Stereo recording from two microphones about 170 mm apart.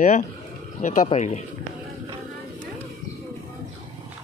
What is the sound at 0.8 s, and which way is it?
Speech, 45° left (ahead or behind).